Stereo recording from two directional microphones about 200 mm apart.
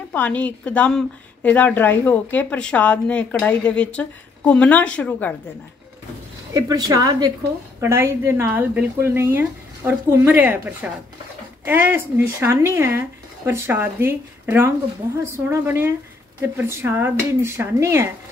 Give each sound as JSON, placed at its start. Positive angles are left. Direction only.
{"t": 0.1, "sound": "a woman's voice", "side_deg": 10}
{"t": 6.5, "sound": "a woman's voice", "side_deg": -20}